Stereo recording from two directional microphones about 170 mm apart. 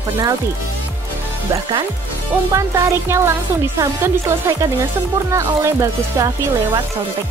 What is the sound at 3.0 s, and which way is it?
Speech, 15° right (ahead or behind).